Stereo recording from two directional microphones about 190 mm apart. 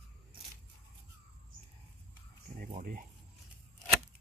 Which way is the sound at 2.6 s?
45° right (ahead or behind).